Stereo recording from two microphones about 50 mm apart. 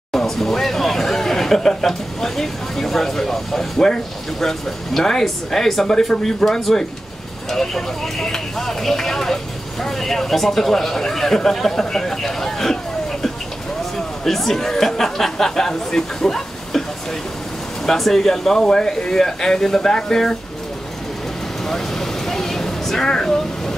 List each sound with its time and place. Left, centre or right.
0.1 s speech: centre
13.9 s speech: centre
17.8 s speech: centre
21.6 s a sound: centre